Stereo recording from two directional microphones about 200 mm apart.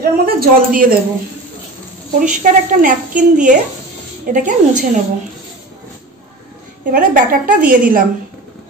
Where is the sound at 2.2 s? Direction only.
40° right (ahead or behind).